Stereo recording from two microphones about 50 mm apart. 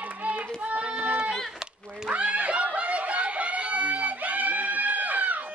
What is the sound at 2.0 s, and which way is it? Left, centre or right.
Snicker, right.